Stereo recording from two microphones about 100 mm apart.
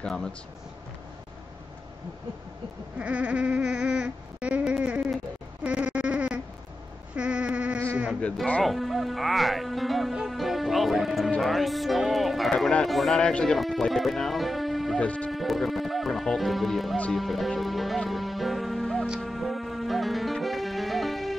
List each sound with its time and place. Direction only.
0.0 s speech: 10° left (ahead or behind)
3.0 s a sound: 15° right (ahead or behind)
7.2 s bleat: 10° right (ahead or behind)
8.5 s speech: 5° left (ahead or behind)
15.0 s speech: 10° left (ahead or behind)
15.3 s music: centre (ahead or behind)